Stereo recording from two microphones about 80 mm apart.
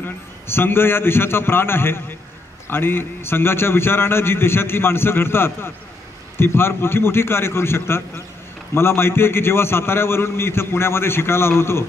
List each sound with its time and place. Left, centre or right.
0.0 s a man's voice: left